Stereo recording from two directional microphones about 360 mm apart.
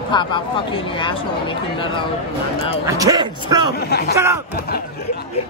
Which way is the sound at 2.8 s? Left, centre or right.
Centre.